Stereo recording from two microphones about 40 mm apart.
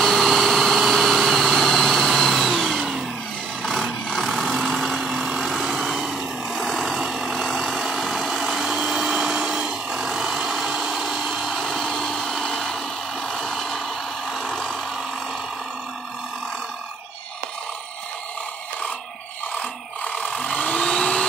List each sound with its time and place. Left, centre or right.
0.0 s vehicle: centre
4.3 s vehicle: centre
4.6 s vehicle: centre
6.5 s vehicle: centre
7.0 s vehicle: centre
7.4 s vehicle: centre
7.7 s vehicle: centre
8.7 s a sound: centre
11.7 s vehicle: centre
12.0 s a sound: centre
19.6 s a sound: left